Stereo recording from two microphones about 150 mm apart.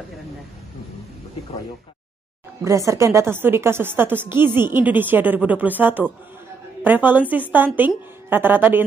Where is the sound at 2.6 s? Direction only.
20° right (ahead or behind).